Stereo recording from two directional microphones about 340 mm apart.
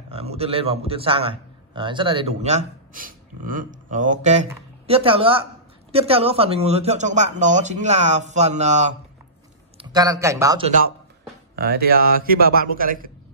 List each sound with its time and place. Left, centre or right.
0.1 s a man's voice: centre
11.5 s speech: right